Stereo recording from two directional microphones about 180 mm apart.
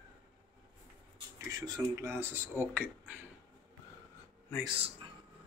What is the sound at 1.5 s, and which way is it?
Speech, 20° right (ahead or behind).